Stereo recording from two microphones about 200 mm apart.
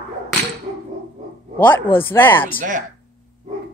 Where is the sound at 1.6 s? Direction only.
10° left (ahead or behind).